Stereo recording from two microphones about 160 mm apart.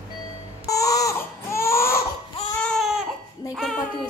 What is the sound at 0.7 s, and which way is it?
Baby cry, 20° left (ahead or behind).